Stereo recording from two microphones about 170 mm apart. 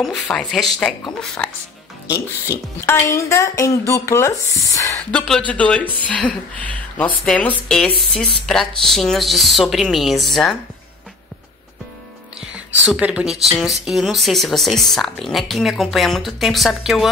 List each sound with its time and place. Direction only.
0.0 s speech: 5° left (ahead or behind)
2.0 s speech: 15° left (ahead or behind)
5.1 s speech: 5° left (ahead or behind)
12.8 s speech: 5° right (ahead or behind)